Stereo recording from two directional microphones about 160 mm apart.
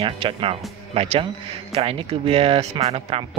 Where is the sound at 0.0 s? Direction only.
35° right (ahead or behind).